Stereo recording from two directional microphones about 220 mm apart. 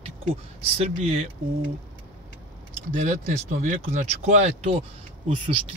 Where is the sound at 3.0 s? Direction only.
35° right (ahead or behind).